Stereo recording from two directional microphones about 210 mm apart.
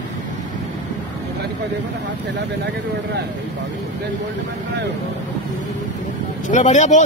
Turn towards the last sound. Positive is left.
turn(degrees=35)  # may be behind; listen again after turning